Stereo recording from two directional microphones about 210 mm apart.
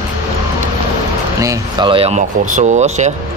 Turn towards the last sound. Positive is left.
turn(degrees=-35)  # may be behind; listen again after turning